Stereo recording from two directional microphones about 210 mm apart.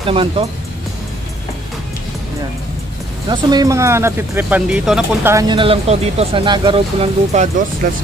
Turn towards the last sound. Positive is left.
turn(degrees=-40)  # may be behind; listen again after turning